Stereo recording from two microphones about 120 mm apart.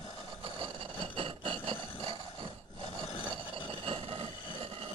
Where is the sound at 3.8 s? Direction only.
55° right (ahead or behind).